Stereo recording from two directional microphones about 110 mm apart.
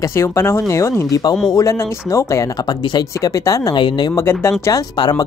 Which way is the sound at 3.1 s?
30° left (ahead or behind).